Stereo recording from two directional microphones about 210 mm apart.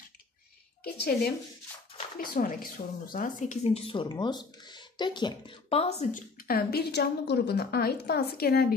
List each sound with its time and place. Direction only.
0.9 s a woman's voice: 45° left (ahead or behind); by 6.2 s 30° left (ahead or behind)
6.4 s a woman's voice: 45° left (ahead or behind)